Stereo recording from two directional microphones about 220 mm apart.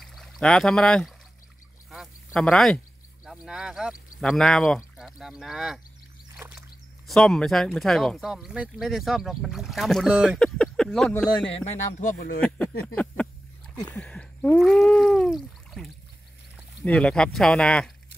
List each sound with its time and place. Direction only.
0.0 s speech: centre (ahead or behind)
1.9 s a sound: centre (ahead or behind)
3.3 s speech: centre (ahead or behind)
6.3 s a sound: 5° right (ahead or behind)
7.1 s speech: centre (ahead or behind)
11.6 s speech: 35° left (ahead or behind)
12.4 s speech: 5° left (ahead or behind)
12.8 s a sound: 5° left (ahead or behind)
16.8 s speech: 5° left (ahead or behind)